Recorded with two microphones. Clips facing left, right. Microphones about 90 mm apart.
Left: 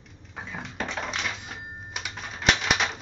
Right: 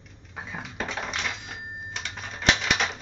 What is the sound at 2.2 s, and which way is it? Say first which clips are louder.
Typewriter: even; centre (ahead or behind).